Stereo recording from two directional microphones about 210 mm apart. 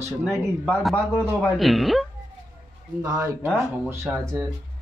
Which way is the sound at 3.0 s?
15° right (ahead or behind).